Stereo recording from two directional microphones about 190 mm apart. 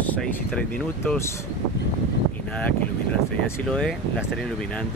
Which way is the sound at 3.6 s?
5° left (ahead or behind).